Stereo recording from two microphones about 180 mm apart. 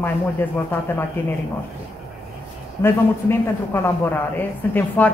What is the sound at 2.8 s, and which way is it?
Speech, 15° left (ahead or behind).